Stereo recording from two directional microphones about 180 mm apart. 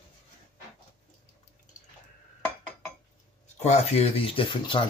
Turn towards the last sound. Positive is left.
turn(degrees=25)  # may be behind; listen again after turning